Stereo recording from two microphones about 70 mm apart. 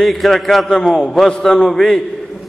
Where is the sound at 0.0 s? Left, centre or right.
Centre.